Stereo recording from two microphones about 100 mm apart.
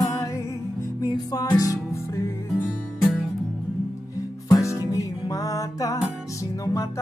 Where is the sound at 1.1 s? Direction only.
40° left (ahead or behind).